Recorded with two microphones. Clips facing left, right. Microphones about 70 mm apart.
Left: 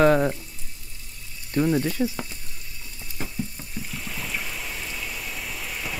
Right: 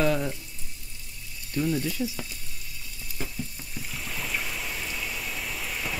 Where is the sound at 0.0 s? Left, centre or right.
Left.